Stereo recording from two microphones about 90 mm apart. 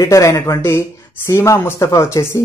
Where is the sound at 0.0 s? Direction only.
35° left (ahead or behind).